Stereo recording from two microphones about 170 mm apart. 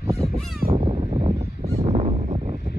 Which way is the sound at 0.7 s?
35° right (ahead or behind).